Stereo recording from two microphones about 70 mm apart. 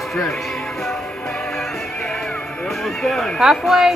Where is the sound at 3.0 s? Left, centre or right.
Centre.